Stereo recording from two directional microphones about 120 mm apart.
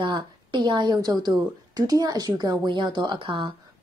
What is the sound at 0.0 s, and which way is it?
A woman's voice, 40° right (ahead or behind).